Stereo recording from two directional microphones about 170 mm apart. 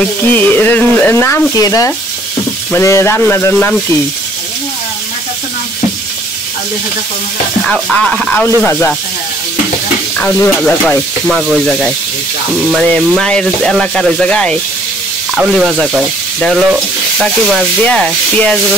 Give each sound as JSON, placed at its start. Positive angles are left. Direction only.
{"t": 0.3, "sound": "speech", "side_deg": 10}
{"t": 7.7, "sound": "speech", "side_deg": 5}
{"t": 10.1, "sound": "speech", "side_deg": 10}
{"t": 17.8, "sound": "speech", "side_deg": 5}